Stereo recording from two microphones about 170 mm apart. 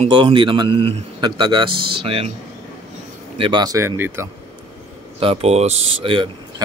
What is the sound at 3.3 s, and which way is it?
Speech, 30° right (ahead or behind).